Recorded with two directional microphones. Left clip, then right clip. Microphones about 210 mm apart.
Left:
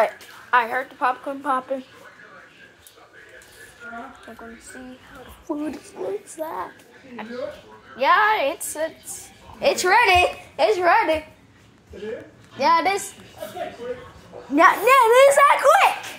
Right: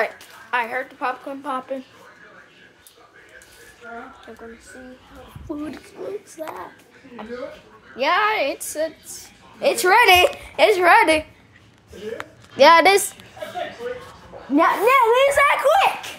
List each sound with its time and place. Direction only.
0.0 s a woman's voice: 10° right (ahead or behind)
5.5 s a woman's voice: 5° left (ahead or behind)
8.0 s a woman's voice: 35° right (ahead or behind)
9.6 s a woman's voice: 20° right (ahead or behind)
9.8 s a woman's voice: 35° right (ahead or behind)
12.5 s a woman's voice: 55° right (ahead or behind)
14.5 s speech: 10° right (ahead or behind)